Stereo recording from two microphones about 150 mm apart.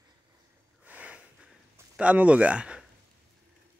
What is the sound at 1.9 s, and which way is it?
Speech, 10° right (ahead or behind).